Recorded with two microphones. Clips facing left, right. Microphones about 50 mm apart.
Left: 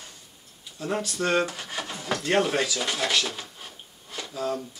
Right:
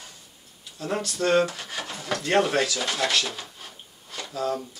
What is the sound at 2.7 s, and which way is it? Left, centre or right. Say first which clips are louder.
Drawer open or close: right 1 dB; centre.